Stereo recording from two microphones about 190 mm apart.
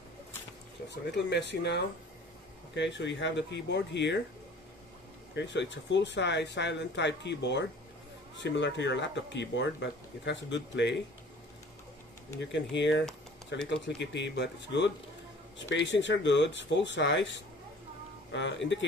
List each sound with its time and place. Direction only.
0.8 s speech: 65° left (ahead or behind)
5.3 s speech: 70° left (ahead or behind)
12.4 s speech: 70° left (ahead or behind)